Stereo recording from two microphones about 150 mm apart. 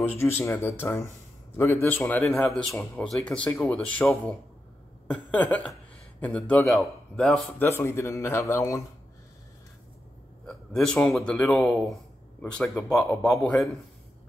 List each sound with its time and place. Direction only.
0.1 s a man's voice: 15° left (ahead or behind)
7.5 s speech: 15° left (ahead or behind)
10.4 s speech: 5° left (ahead or behind)